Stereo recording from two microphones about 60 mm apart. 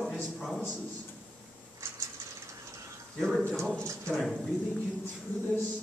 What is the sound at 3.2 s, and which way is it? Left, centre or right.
Speech, centre.